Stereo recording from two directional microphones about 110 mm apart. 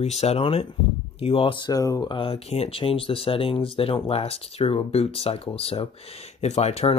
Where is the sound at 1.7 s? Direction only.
30° left (ahead or behind).